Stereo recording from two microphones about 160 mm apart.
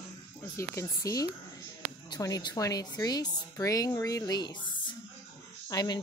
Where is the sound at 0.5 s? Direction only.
20° left (ahead or behind).